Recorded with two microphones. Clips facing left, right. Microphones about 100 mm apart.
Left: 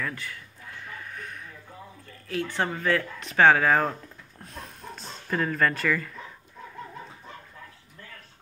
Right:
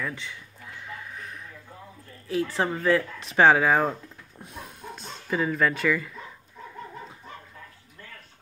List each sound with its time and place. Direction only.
0.0 s speech: centre (ahead or behind)
0.8 s a sound: centre (ahead or behind)
2.2 s speech: 30° right (ahead or behind)
2.6 s speech: 5° right (ahead or behind)
3.2 s speech: 25° right (ahead or behind); by 3.9 s 10° right (ahead or behind)
4.4 s a sound: 10° right (ahead or behind)
5.0 s speech: 5° right (ahead or behind)